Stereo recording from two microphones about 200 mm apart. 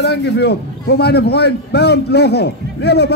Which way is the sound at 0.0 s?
55° left (ahead or behind).